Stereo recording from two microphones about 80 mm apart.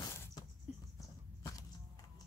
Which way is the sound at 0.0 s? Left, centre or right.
Left.